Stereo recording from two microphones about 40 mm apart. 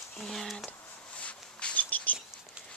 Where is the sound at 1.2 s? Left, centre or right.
Left.